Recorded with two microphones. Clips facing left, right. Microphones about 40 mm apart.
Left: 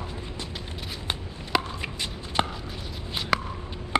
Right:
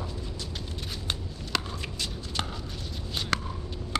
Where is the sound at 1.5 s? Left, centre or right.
Left.